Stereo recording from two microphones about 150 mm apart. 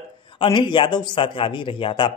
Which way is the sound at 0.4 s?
30° left (ahead or behind).